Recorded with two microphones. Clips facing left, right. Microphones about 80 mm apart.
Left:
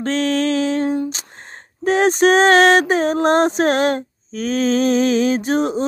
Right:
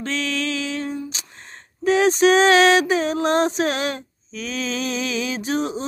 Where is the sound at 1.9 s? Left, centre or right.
Left.